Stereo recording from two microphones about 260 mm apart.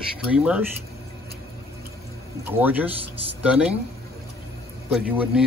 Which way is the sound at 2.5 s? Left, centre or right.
Centre.